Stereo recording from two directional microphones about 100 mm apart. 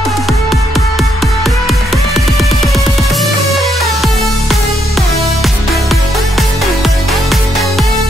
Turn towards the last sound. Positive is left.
turn(degrees=0)  # may be behind; listen again after turning